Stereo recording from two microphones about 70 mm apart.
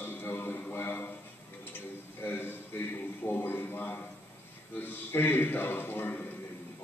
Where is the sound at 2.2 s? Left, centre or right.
Left.